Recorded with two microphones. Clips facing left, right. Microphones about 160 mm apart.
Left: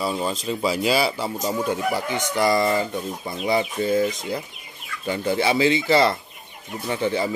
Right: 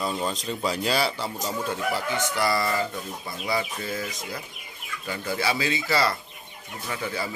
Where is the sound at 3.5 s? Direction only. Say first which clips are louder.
Left 8 dB; 25° left (ahead or behind).